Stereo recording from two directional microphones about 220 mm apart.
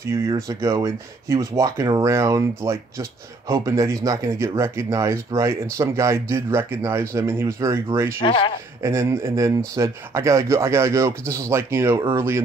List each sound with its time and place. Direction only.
0.0 s speech: 15° right (ahead or behind)
8.2 s speech: 20° left (ahead or behind)
8.8 s speech: 10° right (ahead or behind)